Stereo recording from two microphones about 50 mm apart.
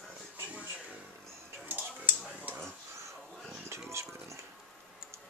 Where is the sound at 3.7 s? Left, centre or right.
Right.